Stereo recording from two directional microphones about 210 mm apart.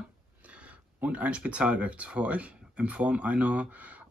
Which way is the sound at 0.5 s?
5° right (ahead or behind).